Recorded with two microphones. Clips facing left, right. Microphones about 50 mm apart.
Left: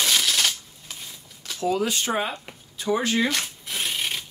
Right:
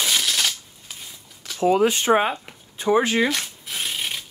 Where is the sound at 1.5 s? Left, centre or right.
Right.